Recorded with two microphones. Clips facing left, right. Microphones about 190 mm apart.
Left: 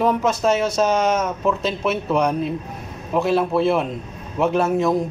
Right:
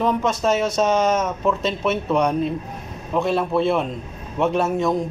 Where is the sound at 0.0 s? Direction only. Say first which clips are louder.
Left 2 dB; centre (ahead or behind).